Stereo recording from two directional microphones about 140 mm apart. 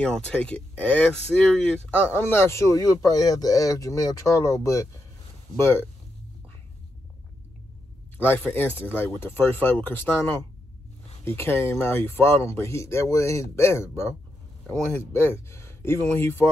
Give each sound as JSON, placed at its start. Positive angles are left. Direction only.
{"t": 0.0, "sound": "speech", "side_deg": 10}
{"t": 2.1, "sound": "speech", "side_deg": 20}
{"t": 8.2, "sound": "speech", "side_deg": 15}